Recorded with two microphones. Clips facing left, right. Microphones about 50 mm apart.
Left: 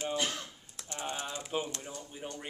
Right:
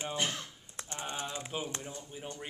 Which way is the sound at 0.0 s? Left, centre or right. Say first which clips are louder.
Left 1 dB; right.